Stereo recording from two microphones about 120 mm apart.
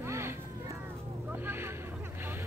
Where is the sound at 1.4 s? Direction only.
20° right (ahead or behind).